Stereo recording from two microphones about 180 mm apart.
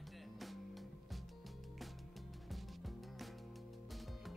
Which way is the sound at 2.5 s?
Centre (ahead or behind).